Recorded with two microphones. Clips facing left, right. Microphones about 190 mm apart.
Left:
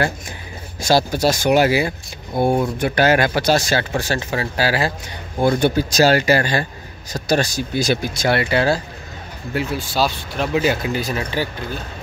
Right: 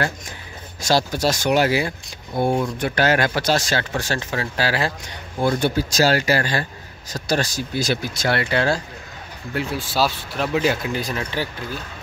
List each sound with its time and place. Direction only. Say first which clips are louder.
0.7 s speech: left 3 dB; 10° left (ahead or behind)
5.4 s speech: left 3 dB; 20° left (ahead or behind)